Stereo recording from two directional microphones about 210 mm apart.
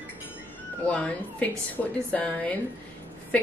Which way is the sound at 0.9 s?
5° left (ahead or behind).